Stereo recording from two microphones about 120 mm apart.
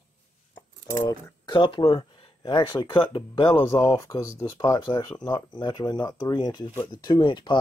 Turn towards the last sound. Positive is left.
turn(degrees=40)  # may be behind; listen again after turning